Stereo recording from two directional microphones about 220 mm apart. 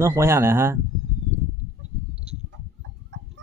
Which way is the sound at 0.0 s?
10° right (ahead or behind).